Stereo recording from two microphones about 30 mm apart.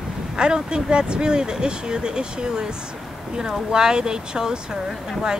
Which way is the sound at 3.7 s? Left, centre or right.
Right.